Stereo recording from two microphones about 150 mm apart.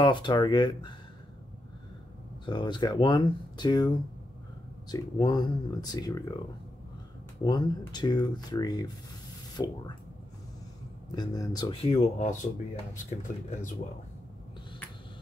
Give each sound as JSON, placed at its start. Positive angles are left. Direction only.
{"t": 0.0, "sound": "speech", "side_deg": 30}
{"t": 2.4, "sound": "speech", "side_deg": 30}
{"t": 7.4, "sound": "speech", "side_deg": 30}
{"t": 11.1, "sound": "speech", "side_deg": 25}
{"t": 11.7, "sound": "speech", "side_deg": 40}